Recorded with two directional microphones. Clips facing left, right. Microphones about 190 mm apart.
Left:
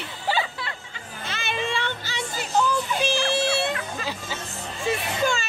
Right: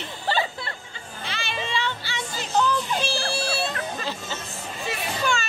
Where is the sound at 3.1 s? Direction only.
20° left (ahead or behind).